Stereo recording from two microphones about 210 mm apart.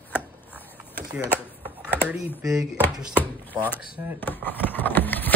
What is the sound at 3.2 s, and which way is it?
Speech, 10° left (ahead or behind).